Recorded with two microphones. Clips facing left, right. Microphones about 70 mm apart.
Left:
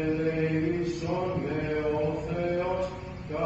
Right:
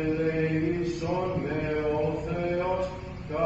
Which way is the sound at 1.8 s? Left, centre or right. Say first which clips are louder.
Right 1 dB; right.